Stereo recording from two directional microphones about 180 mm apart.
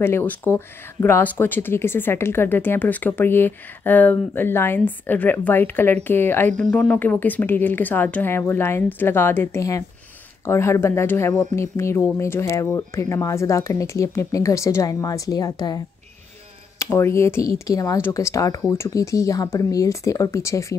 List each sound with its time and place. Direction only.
0.0 s speech: 10° left (ahead or behind)